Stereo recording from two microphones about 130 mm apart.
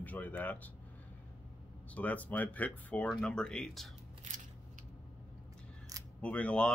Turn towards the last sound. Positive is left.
turn(degrees=10)  # may be behind; listen again after turning